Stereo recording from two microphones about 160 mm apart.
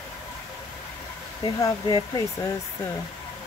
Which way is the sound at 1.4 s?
25° left (ahead or behind).